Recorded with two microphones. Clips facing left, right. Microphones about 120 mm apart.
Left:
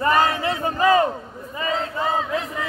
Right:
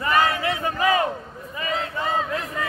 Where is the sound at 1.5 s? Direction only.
30° left (ahead or behind).